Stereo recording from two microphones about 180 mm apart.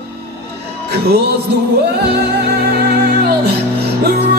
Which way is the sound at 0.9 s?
65° right (ahead or behind).